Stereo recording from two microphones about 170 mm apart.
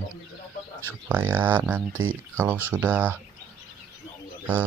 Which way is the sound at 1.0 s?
10° right (ahead or behind).